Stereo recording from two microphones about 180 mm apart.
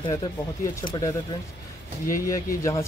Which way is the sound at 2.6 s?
15° left (ahead or behind).